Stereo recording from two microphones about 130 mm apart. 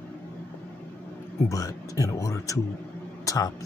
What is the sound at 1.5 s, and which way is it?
Speech, 25° left (ahead or behind).